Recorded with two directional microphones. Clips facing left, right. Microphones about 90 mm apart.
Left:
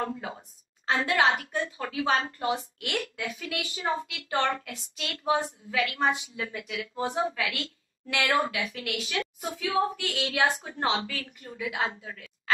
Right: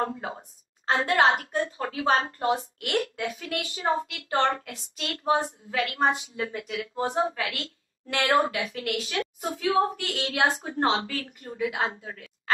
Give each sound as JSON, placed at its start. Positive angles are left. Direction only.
{"t": 0.0, "sound": "a woman's voice", "side_deg": -35}